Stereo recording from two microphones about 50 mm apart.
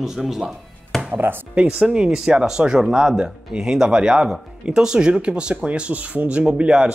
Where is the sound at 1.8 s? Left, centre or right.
Centre.